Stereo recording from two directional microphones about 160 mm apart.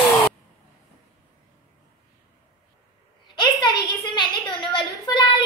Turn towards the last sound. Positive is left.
turn(degrees=30)  # may be behind; listen again after turning